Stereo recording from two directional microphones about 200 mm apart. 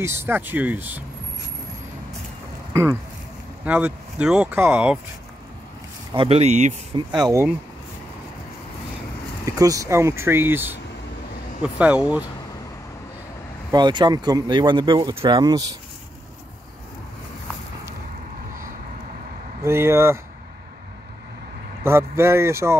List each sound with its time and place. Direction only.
0.0 s speech: 10° right (ahead or behind)
2.7 s speech: 15° right (ahead or behind)
6.1 s speech: 30° right (ahead or behind)
6.9 s speech: 25° right (ahead or behind)
7.2 s speech: 15° right (ahead or behind)
9.5 s speech: 15° right (ahead or behind)
13.7 s speech: 20° right (ahead or behind)
19.6 s speech: 15° right (ahead or behind)
21.8 s speech: 15° right (ahead or behind)